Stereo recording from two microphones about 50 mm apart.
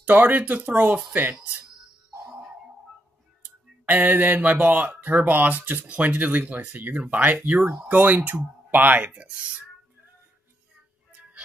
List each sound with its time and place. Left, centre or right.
0.0 s speech: right
3.8 s speech: right